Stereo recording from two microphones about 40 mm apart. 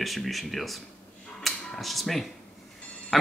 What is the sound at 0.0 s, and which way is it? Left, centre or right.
Speech, centre.